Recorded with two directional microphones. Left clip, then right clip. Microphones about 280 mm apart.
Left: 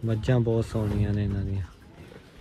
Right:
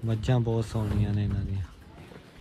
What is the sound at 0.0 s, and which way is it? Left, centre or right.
Speech, centre.